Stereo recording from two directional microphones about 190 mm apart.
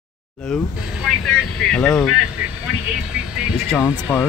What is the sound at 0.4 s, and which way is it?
Speech, 5° left (ahead or behind).